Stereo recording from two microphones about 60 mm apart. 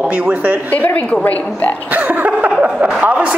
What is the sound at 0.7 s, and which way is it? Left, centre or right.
A woman's voice, left.